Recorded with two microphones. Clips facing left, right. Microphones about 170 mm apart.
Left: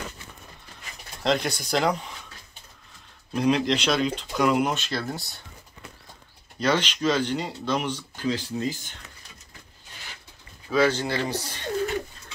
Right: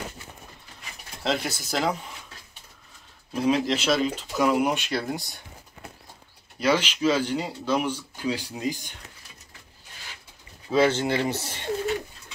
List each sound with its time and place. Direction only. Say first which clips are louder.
1.2 s speech: left 3 dB; 5° right (ahead or behind)
3.3 s speech: left 1 dB; 5° right (ahead or behind)
6.6 s speech: right 1 dB; 10° right (ahead or behind)
10.7 s speech: right 1 dB; 25° right (ahead or behind)